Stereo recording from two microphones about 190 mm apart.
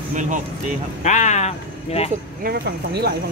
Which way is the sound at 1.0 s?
40° left (ahead or behind).